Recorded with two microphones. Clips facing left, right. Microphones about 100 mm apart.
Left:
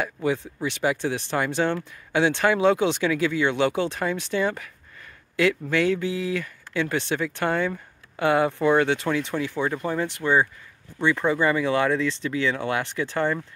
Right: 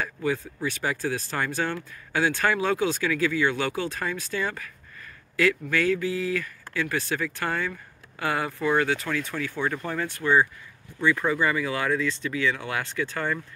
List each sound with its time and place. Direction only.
0.0 s speech: 20° left (ahead or behind)